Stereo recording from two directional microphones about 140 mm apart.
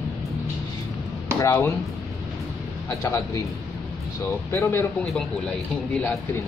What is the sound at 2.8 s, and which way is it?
Speech, 20° left (ahead or behind).